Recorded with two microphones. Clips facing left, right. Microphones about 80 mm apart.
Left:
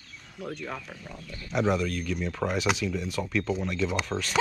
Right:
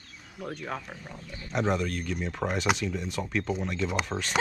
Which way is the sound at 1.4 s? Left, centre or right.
Centre.